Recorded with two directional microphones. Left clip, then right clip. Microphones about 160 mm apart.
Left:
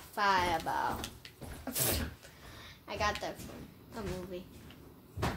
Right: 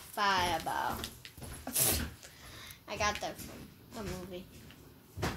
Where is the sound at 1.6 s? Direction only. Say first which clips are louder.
Right 1 dB; 20° left (ahead or behind).